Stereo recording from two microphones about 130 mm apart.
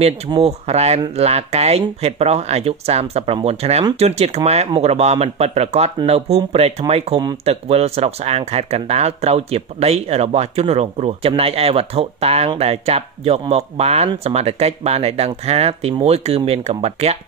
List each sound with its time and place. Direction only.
0.4 s speech: 55° right (ahead or behind)